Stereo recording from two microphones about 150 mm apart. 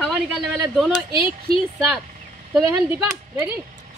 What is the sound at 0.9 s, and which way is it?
Speech, 35° left (ahead or behind).